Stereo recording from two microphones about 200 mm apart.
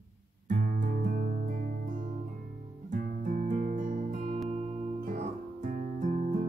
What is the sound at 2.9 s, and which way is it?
Guitar, 45° right (ahead or behind).